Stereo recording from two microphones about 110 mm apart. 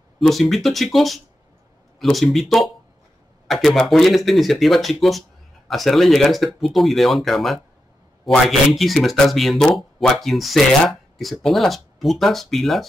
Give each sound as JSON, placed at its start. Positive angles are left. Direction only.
{"t": 0.2, "sound": "speech", "side_deg": 0}